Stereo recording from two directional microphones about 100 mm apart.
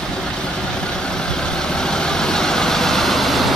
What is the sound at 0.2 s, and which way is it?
Vehicle, 10° left (ahead or behind).